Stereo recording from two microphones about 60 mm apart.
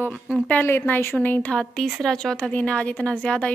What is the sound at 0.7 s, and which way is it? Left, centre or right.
Speech, left.